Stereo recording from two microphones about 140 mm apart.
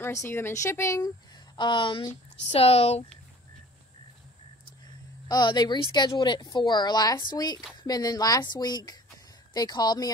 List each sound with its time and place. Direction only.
0.0 s speech: 20° left (ahead or behind)
1.6 s speech: 35° left (ahead or behind)
5.3 s speech: 30° left (ahead or behind)